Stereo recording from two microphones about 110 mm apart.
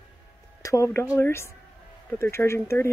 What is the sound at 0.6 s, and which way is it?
A woman's voice, 30° left (ahead or behind).